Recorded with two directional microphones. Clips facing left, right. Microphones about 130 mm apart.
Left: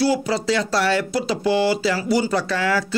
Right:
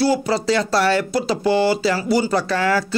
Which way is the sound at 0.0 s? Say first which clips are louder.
Right 2 dB; 40° right (ahead or behind).